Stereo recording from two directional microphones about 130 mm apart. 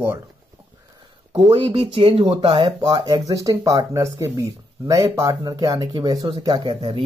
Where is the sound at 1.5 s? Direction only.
45° right (ahead or behind).